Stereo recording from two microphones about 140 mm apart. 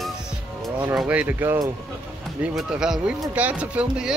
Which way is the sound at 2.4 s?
5° right (ahead or behind).